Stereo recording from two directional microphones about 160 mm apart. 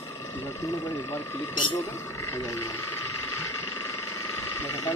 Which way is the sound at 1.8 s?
15° left (ahead or behind).